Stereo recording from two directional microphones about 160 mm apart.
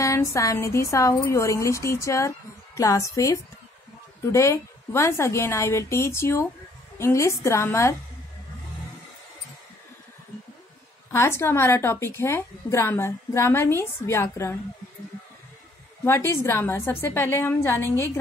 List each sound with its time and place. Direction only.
0.0 s a woman's voice: 20° left (ahead or behind)
11.1 s a woman's voice: 15° left (ahead or behind)
16.0 s a woman's voice: 15° left (ahead or behind)